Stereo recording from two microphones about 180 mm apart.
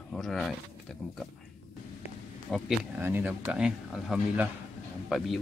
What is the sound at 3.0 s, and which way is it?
Speech, 10° right (ahead or behind).